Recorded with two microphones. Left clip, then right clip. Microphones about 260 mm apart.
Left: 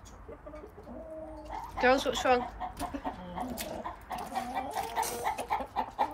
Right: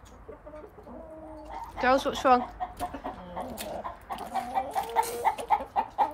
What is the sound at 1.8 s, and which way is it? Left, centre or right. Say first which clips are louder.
Speech: right 2 dB; centre.